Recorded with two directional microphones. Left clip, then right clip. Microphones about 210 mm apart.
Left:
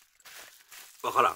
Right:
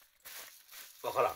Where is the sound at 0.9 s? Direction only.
35° left (ahead or behind).